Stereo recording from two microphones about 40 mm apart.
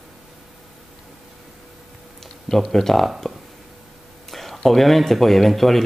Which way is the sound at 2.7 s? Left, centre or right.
Centre.